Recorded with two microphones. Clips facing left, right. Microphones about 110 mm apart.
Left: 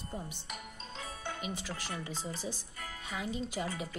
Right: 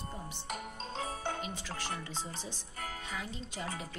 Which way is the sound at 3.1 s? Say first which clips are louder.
Left 4 dB; 15° left (ahead or behind).